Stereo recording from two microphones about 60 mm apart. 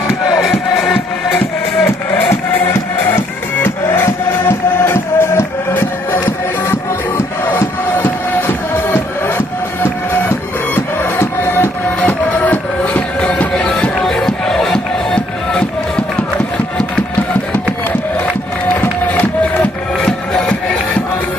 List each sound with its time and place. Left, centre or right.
0.3 s music: centre
3.9 s music: left
10.7 s music: left
12.4 s music: left
13.9 s music: centre
18.8 s music: left
20.0 s music: centre